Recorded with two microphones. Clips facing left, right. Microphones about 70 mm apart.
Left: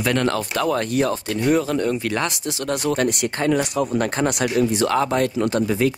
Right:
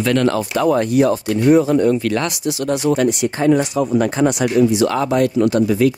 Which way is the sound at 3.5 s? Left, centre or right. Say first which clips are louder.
Right 5 dB; right.